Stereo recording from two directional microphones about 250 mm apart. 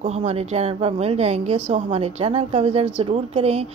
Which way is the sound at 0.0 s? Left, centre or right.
Right.